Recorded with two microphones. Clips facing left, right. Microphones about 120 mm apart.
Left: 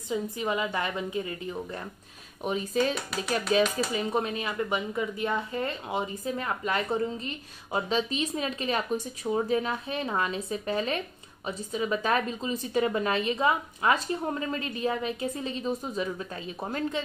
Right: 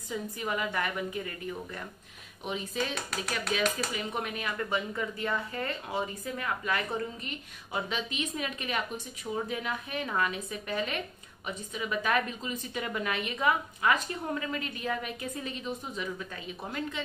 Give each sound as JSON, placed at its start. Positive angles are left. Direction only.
{"t": 0.1, "sound": "speech", "side_deg": 20}
{"t": 2.4, "sound": "a woman's voice", "side_deg": 40}